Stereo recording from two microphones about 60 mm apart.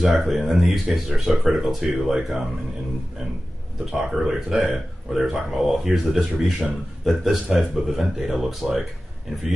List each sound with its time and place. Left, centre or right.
0.0 s speech: centre
3.9 s speech: centre